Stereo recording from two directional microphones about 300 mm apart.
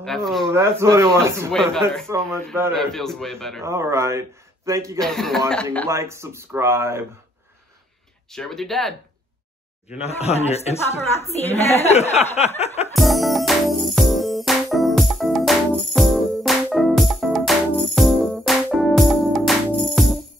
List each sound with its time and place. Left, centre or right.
0.0 s a man's voice: centre
1.5 s a man's voice: centre
3.6 s speech: centre
4.9 s a man's voice: centre
5.9 s speech: centre
8.3 s a man's voice: centre
10.0 s speech: left
12.9 s music: centre